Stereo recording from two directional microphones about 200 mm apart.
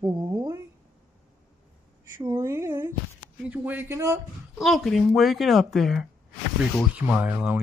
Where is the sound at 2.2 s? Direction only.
20° right (ahead or behind).